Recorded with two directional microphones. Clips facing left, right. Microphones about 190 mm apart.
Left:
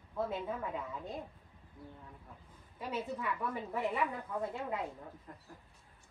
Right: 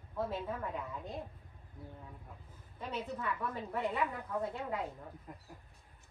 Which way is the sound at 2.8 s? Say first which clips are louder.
Left 1 dB; 10° left (ahead or behind).